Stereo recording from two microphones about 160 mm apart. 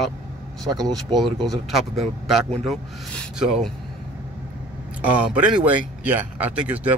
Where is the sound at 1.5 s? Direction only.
Centre (ahead or behind).